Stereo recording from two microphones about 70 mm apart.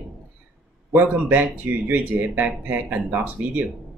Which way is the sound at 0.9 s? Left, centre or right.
Right.